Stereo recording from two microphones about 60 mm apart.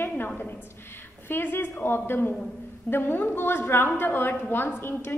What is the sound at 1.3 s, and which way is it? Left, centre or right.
A woman's voice, left.